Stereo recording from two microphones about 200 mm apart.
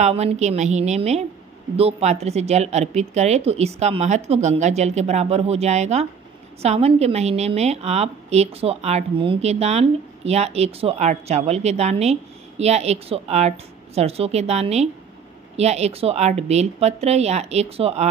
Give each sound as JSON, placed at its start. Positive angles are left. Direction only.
{"t": 0.0, "sound": "a woman's voice", "side_deg": -30}